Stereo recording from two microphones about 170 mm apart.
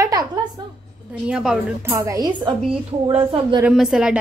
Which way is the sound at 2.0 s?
20° right (ahead or behind).